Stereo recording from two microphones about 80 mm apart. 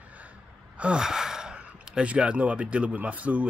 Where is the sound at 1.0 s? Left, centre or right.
Centre.